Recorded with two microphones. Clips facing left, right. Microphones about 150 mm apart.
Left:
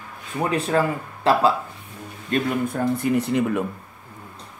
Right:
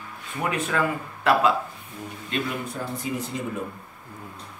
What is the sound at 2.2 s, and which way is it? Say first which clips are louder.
Speech: left 7 dB; 45° left (ahead or behind).